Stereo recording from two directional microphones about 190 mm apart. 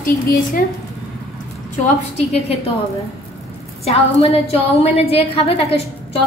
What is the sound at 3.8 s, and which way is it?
A woman's voice, 35° left (ahead or behind).